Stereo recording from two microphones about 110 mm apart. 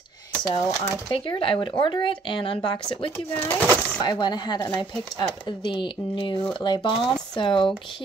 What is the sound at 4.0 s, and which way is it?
Speech, 40° left (ahead or behind).